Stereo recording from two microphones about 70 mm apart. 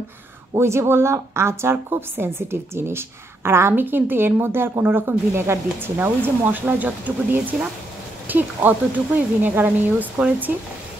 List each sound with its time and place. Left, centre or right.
0.6 s a woman's voice: right